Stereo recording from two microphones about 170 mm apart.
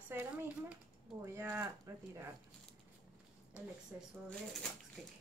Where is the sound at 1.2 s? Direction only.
15° right (ahead or behind).